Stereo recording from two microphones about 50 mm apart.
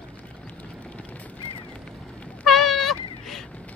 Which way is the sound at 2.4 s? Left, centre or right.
Centre.